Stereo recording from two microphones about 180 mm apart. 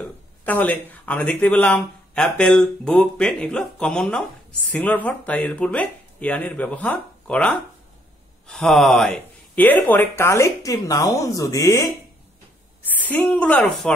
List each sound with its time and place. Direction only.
0.5 s speech: 10° left (ahead or behind)